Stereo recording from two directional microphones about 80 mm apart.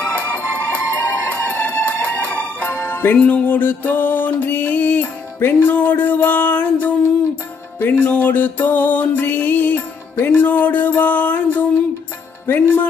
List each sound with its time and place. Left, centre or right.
0.0 s music: centre